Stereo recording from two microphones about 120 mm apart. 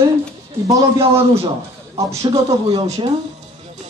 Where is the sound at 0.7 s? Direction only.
25° right (ahead or behind).